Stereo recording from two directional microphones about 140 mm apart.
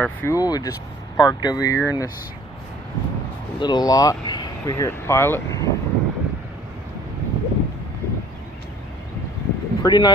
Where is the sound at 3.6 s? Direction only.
30° left (ahead or behind).